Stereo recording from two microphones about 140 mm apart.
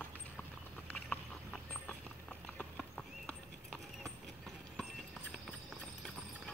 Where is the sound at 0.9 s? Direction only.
5° left (ahead or behind).